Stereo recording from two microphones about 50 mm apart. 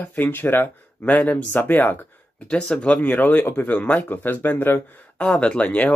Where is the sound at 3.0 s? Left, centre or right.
Left.